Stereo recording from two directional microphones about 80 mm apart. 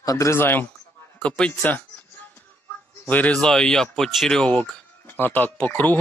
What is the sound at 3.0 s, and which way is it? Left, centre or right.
Speech, left.